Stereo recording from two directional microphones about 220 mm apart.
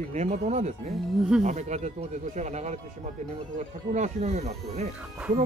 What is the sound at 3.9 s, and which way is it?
Speech, 30° right (ahead or behind).